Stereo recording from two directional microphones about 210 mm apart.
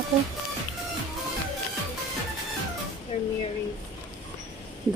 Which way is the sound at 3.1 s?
30° left (ahead or behind).